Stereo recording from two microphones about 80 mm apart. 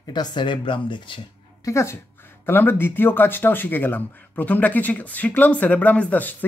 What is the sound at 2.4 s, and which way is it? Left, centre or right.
Speech, left.